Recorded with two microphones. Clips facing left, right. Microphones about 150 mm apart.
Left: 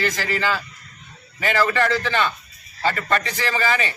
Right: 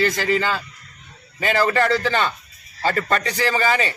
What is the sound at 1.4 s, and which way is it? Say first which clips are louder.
A man's voice: right 1 dB; 35° right (ahead or behind).